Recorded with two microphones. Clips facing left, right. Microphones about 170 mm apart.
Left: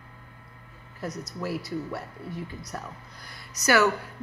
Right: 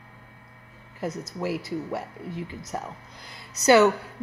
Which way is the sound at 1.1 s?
25° right (ahead or behind).